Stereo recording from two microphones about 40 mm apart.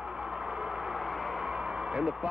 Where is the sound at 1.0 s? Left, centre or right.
Centre.